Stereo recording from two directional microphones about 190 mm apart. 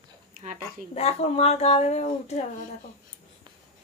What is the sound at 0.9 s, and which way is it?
Speech, 35° left (ahead or behind).